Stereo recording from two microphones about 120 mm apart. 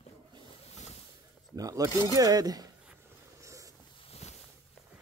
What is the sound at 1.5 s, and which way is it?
Speech, 30° right (ahead or behind).